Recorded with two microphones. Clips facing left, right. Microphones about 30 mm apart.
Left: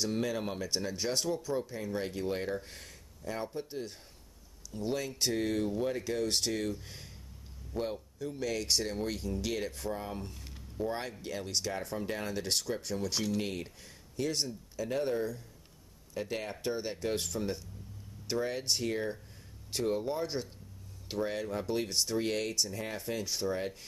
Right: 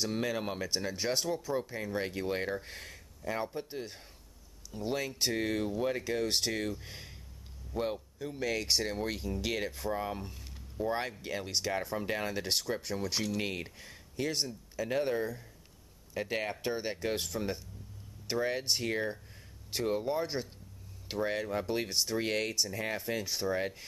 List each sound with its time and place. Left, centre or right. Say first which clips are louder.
0.0 s speech: even; centre
10.2 s speech: left 1 dB; centre